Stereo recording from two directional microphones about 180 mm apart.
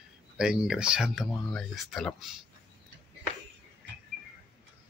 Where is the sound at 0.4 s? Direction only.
5° right (ahead or behind).